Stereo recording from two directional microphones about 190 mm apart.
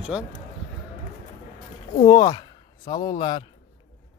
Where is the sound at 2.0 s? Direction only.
20° left (ahead or behind).